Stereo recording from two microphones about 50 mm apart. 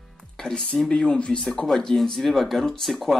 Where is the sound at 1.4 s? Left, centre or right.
Centre.